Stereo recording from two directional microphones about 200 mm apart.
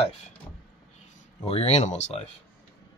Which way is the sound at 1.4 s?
30° left (ahead or behind).